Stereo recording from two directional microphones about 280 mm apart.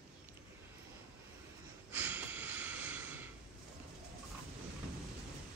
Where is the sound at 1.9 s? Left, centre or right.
Centre.